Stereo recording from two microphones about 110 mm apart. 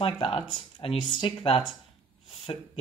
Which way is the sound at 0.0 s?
60° left (ahead or behind).